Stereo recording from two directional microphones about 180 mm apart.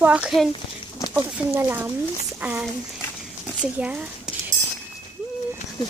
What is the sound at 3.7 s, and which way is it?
Speech, 5° right (ahead or behind).